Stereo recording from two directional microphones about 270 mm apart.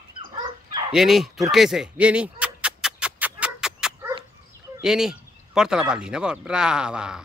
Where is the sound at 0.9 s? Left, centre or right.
Centre.